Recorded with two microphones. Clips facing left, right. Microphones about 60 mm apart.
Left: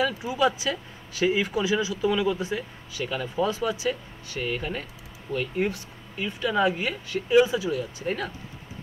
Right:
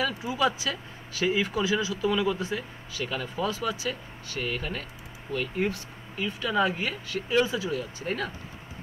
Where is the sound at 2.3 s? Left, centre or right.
Left.